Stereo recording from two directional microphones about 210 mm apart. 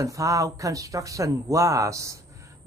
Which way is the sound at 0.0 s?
15° right (ahead or behind).